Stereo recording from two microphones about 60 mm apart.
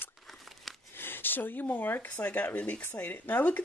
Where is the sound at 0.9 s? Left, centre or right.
Left.